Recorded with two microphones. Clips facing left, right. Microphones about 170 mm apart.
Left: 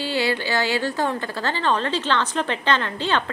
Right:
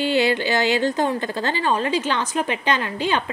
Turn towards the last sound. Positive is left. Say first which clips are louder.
# right 1 dB
turn(degrees=-15)  # may be behind; listen again after turning